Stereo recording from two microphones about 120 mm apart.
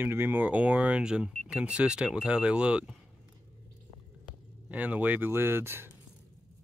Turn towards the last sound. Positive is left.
turn(degrees=-20)  # may be behind; listen again after turning